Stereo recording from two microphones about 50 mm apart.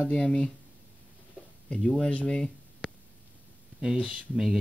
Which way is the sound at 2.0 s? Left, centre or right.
Left.